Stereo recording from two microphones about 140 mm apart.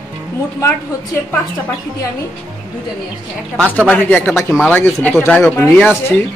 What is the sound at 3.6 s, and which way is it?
Speech, 10° right (ahead or behind).